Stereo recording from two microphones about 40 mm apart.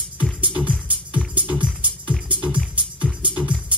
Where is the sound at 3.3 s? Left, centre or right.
Right.